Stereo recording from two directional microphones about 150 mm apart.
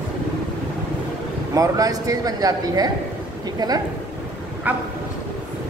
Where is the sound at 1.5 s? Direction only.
25° right (ahead or behind).